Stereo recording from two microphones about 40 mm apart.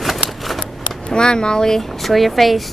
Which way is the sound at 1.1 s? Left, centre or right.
Centre.